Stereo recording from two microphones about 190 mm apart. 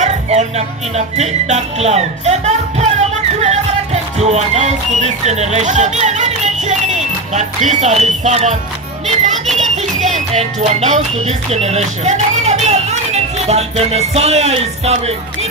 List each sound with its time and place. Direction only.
0.0 s speech: 35° right (ahead or behind)
9.9 s music: 40° right (ahead or behind)